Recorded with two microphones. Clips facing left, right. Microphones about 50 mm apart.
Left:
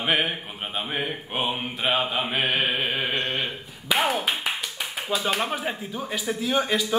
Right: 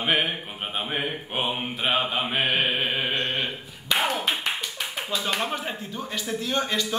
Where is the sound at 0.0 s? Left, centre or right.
Centre.